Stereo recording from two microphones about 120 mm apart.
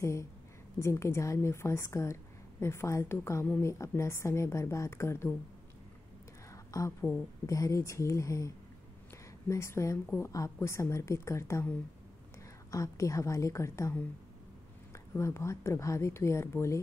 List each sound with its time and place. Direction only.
0.0 s speech: 25° left (ahead or behind)
6.5 s a sound: 25° left (ahead or behind)
7.4 s speech: 30° left (ahead or behind)
12.7 s speech: 30° left (ahead or behind)